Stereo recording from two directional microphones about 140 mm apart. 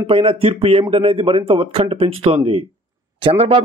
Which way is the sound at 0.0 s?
45° right (ahead or behind).